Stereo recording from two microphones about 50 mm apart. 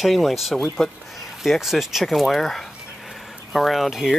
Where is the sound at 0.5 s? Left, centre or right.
Centre.